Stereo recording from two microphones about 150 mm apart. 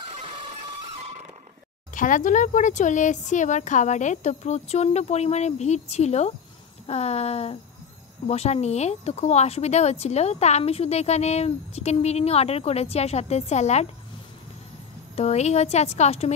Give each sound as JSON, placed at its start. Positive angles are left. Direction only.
{"t": 2.0, "sound": "a woman's voice", "side_deg": 60}
{"t": 15.1, "sound": "a woman's voice", "side_deg": 45}